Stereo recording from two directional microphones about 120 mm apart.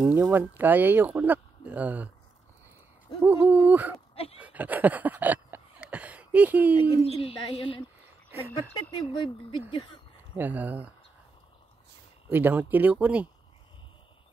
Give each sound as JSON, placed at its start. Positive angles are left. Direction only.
{"t": 0.0, "sound": "speech", "side_deg": -10}
{"t": 3.2, "sound": "speech", "side_deg": -15}
{"t": 4.1, "sound": "a sound", "side_deg": 55}
{"t": 4.4, "sound": "a sound", "side_deg": -10}
{"t": 7.1, "sound": "speech", "side_deg": 50}
{"t": 8.9, "sound": "speech", "side_deg": 40}
{"t": 10.3, "sound": "speech", "side_deg": -15}
{"t": 12.3, "sound": "speech", "side_deg": -15}